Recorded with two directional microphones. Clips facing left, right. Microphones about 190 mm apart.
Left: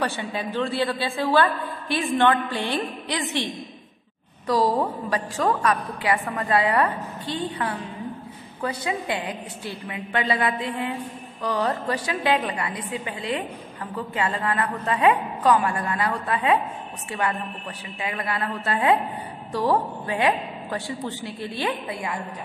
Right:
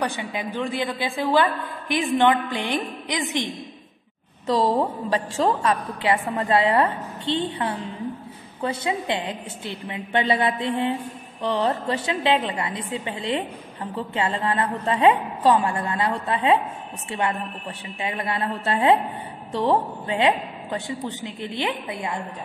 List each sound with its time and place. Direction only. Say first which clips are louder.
0.0 s a woman's voice: even; 15° right (ahead or behind)
4.5 s a woman's voice: right 1 dB; 25° right (ahead or behind)